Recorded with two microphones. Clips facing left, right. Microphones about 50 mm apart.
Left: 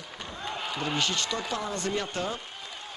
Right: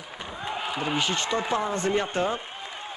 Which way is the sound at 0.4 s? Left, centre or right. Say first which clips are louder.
Right 3 dB; centre.